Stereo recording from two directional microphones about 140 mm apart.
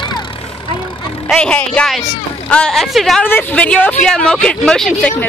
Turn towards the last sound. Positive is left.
turn(degrees=5)  # may be behind; listen again after turning